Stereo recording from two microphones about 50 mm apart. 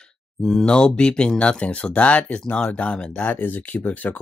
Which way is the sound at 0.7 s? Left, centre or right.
Centre.